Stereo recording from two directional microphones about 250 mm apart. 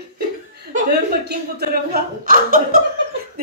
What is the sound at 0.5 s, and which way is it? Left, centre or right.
Speech, right.